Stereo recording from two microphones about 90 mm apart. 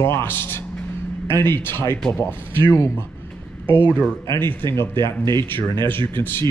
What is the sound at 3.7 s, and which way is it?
Speech, 15° right (ahead or behind).